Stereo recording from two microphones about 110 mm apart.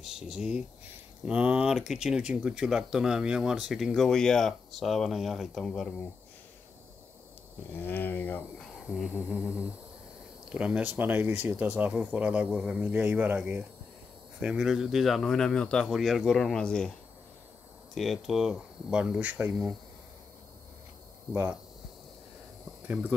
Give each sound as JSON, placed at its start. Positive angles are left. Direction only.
{"t": 0.0, "sound": "speech", "side_deg": -5}
{"t": 7.7, "sound": "speech", "side_deg": 20}
{"t": 8.5, "sound": "a sound", "side_deg": 0}
{"t": 9.3, "sound": "speech", "side_deg": -10}
{"t": 17.9, "sound": "speech", "side_deg": 0}
{"t": 21.3, "sound": "speech", "side_deg": -20}